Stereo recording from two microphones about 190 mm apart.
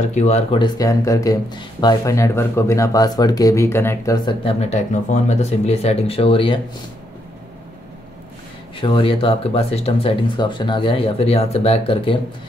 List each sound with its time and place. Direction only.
0.1 s speech: 35° left (ahead or behind); by 4.4 s 20° left (ahead or behind)
4.5 s speech: 35° left (ahead or behind)
8.7 s speech: 25° left (ahead or behind)